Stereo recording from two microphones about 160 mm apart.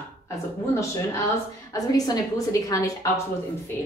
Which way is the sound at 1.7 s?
20° left (ahead or behind).